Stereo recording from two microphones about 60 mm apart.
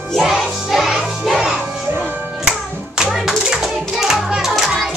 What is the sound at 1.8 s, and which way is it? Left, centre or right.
Music, right.